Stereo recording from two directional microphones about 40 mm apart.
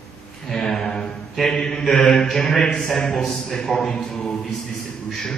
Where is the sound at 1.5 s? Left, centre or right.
Centre.